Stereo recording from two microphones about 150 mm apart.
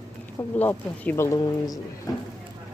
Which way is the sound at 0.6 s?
15° left (ahead or behind).